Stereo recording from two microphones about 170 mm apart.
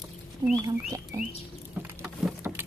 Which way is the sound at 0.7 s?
20° right (ahead or behind).